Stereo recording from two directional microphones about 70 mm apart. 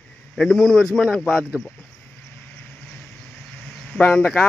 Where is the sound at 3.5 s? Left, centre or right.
Left.